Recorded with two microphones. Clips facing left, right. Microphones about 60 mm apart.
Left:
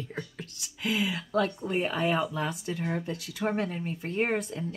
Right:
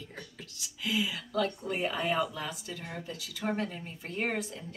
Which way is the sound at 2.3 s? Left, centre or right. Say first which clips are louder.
Left 7 dB; left.